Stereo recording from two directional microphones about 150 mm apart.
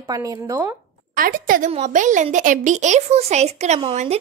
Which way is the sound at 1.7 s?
55° right (ahead or behind).